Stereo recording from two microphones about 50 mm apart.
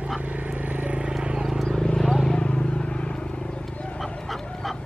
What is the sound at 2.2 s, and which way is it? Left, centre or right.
Vehicle, centre.